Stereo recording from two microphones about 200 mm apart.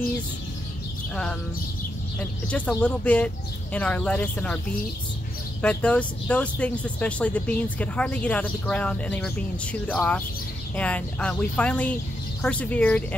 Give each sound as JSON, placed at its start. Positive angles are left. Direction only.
{"t": 2.5, "sound": "speech", "side_deg": 5}
{"t": 5.6, "sound": "speech", "side_deg": 5}